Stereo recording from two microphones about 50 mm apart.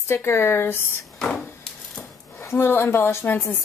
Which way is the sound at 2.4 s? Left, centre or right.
Left.